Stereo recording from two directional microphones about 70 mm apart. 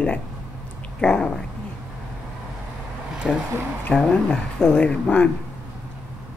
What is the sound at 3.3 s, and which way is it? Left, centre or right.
Speech, centre.